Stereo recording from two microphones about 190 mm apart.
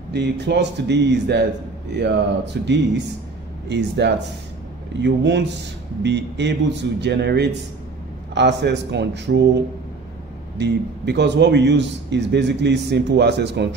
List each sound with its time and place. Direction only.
0.1 s a man's voice: 65° right (ahead or behind)
10.6 s a man's voice: 65° right (ahead or behind)